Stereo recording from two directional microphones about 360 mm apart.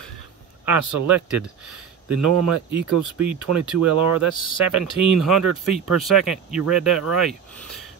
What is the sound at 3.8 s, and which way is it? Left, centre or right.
Speech, right.